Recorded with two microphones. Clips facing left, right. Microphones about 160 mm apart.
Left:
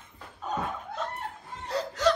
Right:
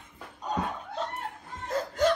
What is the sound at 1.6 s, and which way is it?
Laughter, 45° right (ahead or behind).